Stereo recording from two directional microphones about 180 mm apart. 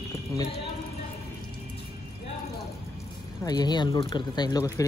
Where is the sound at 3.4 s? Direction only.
25° left (ahead or behind).